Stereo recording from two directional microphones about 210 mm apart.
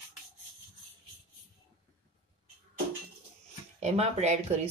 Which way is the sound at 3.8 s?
30° right (ahead or behind).